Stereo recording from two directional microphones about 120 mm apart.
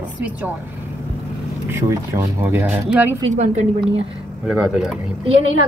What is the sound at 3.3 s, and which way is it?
Speech, 85° right.